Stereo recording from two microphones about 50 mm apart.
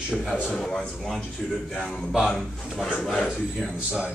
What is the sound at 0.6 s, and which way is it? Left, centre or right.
Speech, centre.